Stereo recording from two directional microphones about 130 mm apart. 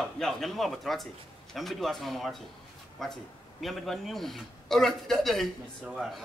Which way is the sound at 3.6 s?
Centre (ahead or behind).